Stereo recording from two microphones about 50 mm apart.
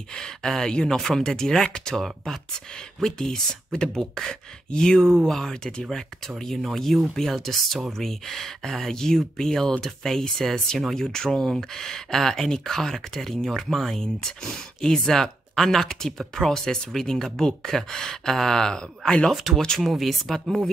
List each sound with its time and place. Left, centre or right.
0.1 s speech: centre
5.9 s speech: centre
19.3 s speech: centre